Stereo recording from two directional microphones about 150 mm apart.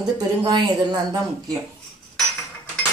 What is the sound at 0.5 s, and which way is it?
Speech, 25° right (ahead or behind).